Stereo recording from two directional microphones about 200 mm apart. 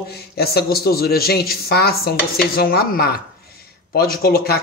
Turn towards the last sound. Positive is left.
turn(degrees=50)  # may be behind; listen again after turning